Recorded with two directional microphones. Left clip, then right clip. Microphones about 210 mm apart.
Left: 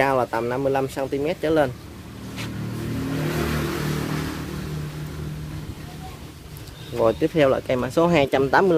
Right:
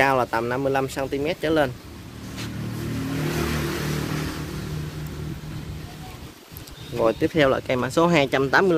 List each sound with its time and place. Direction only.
0.0 s speech: centre (ahead or behind)
3.2 s vehicle: 45° left (ahead or behind)
7.0 s speech: centre (ahead or behind)